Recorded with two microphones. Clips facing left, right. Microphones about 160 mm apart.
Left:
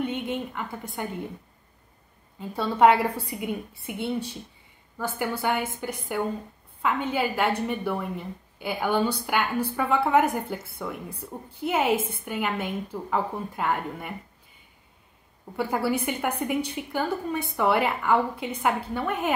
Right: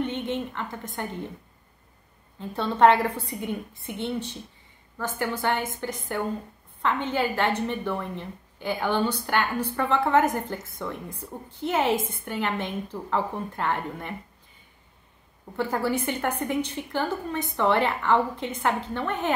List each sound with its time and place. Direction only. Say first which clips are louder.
0.0 s a woman's voice: right 1 dB; 10° left (ahead or behind)
2.3 s a woman's voice: even; 10° left (ahead or behind)
15.5 s a woman's voice: even; 10° left (ahead or behind)